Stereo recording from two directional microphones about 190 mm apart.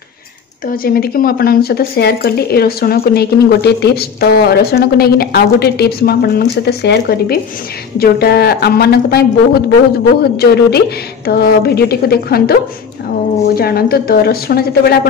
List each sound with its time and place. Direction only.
0.7 s speech: 50° left (ahead or behind)
13.6 s a woman's voice: 55° left (ahead or behind)